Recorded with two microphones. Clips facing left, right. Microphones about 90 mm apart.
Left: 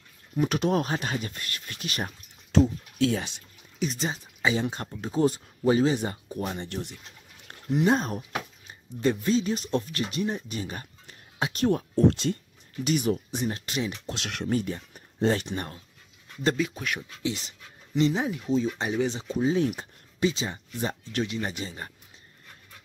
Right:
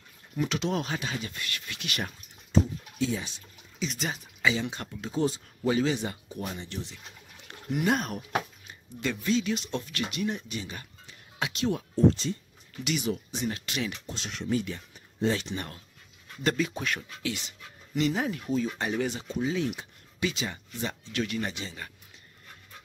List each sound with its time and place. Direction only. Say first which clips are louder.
0.4 s speech: left 4 dB; 45° left (ahead or behind)
2.5 s speech: left 4 dB; 80° left
3.8 s speech: left 3 dB; 40° left (ahead or behind)
6.6 s speech: left 4 dB; 55° left (ahead or behind)
7.7 s speech: left 4 dB; 30° left (ahead or behind)
11.6 s speech: left 2 dB; 55° left (ahead or behind)
12.8 s speech: left 5 dB; 40° left (ahead or behind)
13.5 s speech: left 1 dB; 35° left (ahead or behind)
14.0 s speech: left 4 dB; 80° left
14.4 s speech: left 2 dB; 45° left (ahead or behind)
16.5 s speech: left 1 dB; 5° left (ahead or behind)
17.2 s speech: left 3 dB; 30° left (ahead or behind)
19.6 s a sound: left 4 dB; 45° left (ahead or behind)
20.2 s speech: left 4 dB; 30° left (ahead or behind)